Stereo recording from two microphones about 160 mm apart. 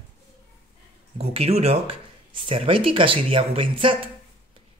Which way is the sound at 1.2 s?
40° right (ahead or behind).